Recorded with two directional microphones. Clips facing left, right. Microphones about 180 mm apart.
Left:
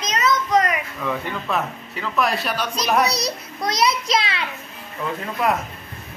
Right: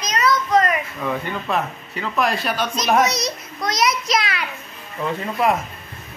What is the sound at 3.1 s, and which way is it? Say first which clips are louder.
A child's voice: even; 30° left (ahead or behind).